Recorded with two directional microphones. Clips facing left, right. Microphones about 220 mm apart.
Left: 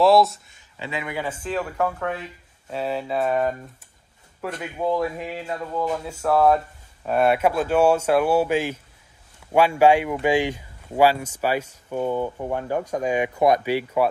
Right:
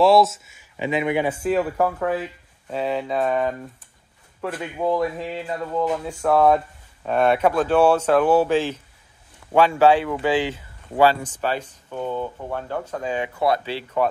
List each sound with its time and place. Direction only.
0.0 s speech: centre (ahead or behind)
2.7 s speech: centre (ahead or behind)